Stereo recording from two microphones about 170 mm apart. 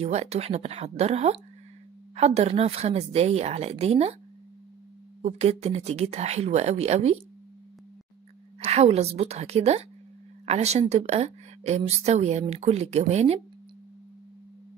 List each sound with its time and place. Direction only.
0.0 s speech: 40° right (ahead or behind)
5.2 s speech: 40° right (ahead or behind)
8.5 s speech: 40° right (ahead or behind)